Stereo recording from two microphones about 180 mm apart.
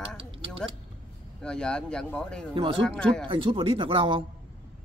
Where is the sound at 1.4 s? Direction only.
5° left (ahead or behind).